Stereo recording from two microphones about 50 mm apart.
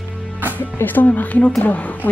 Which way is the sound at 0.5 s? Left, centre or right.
Left.